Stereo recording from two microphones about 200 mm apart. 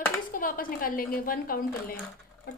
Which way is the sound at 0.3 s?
45° left (ahead or behind).